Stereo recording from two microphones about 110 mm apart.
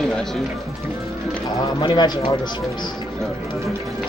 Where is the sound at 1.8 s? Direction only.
40° left (ahead or behind).